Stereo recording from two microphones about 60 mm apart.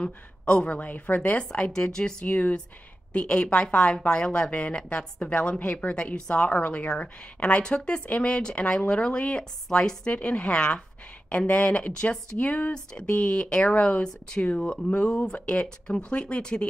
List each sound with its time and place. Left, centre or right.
0.0 s a woman's voice: centre
1.4 s speech: centre
2.2 s a woman's voice: left
12.7 s a woman's voice: centre